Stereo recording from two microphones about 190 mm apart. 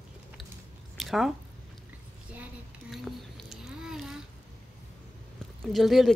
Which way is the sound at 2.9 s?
Centre (ahead or behind).